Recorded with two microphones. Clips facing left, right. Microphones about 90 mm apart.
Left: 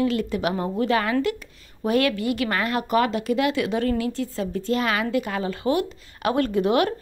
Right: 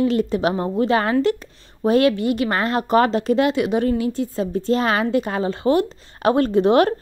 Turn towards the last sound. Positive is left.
turn(degrees=-35)  # may be behind; listen again after turning